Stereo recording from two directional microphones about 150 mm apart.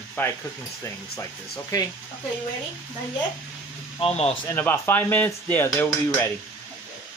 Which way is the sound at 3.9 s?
40° left (ahead or behind).